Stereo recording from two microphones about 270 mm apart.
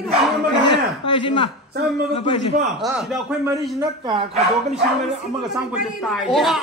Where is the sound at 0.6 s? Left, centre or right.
Centre.